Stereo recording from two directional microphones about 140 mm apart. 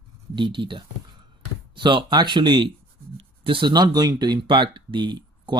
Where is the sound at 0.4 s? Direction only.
35° right (ahead or behind).